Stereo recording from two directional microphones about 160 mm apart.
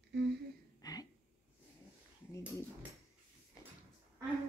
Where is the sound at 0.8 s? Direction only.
25° left (ahead or behind).